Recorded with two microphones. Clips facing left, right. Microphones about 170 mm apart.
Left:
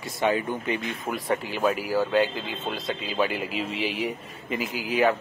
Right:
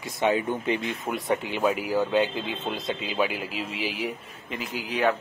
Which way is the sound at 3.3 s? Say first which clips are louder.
Left 3 dB; centre (ahead or behind).